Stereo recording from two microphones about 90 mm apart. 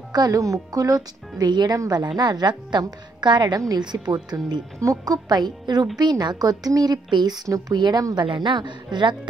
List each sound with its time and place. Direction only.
0.1 s a woman's voice: 45° right (ahead or behind)
3.5 s a woman's voice: 40° right (ahead or behind)
3.8 s a woman's voice: 50° right (ahead or behind)
7.4 s a woman's voice: 45° right (ahead or behind)